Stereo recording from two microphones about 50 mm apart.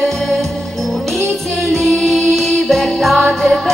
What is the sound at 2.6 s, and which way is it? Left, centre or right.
Music, centre.